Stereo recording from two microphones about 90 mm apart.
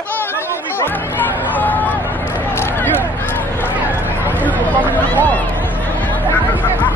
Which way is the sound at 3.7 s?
20° right (ahead or behind).